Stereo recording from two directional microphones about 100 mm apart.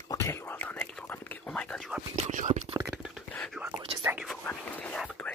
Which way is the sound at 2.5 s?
65° right (ahead or behind).